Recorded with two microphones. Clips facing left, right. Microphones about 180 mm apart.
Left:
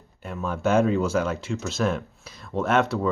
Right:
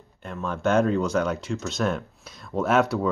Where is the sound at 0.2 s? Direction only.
5° left (ahead or behind).